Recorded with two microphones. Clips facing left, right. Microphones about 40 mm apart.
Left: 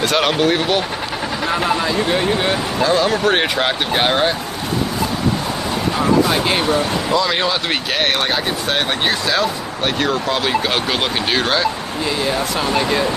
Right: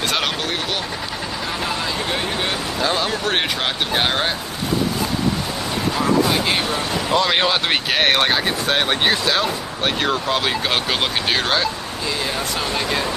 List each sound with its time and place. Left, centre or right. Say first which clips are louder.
0.0 s speech: left 5 dB; centre
0.3 s speech: left 8 dB; centre
2.0 s speech: left 5 dB; centre
6.3 s speech: left 2 dB; centre
7.2 s speech: right 1 dB; right
7.6 s speech: right 1 dB; centre
8.6 s speech: right 1 dB; centre